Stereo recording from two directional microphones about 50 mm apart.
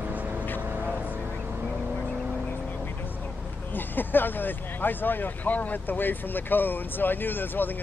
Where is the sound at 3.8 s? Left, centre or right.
Left.